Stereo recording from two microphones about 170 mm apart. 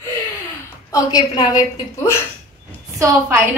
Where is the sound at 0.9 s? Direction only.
25° left (ahead or behind).